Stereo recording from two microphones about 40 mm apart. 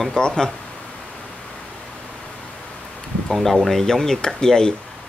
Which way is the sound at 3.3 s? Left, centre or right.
Centre.